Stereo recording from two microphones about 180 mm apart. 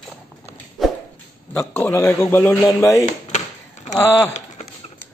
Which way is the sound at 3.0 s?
40° left (ahead or behind).